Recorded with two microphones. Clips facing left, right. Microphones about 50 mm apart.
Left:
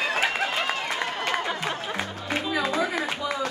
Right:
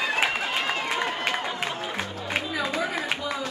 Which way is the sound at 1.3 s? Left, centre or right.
Centre.